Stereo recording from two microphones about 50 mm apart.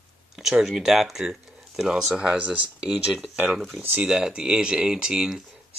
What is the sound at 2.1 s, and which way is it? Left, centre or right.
Speech, right.